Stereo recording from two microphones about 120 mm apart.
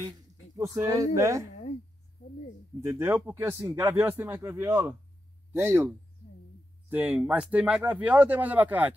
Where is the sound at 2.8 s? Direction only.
20° right (ahead or behind).